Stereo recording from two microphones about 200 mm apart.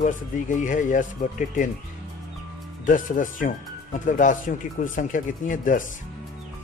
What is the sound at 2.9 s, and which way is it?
Speech, 40° left (ahead or behind).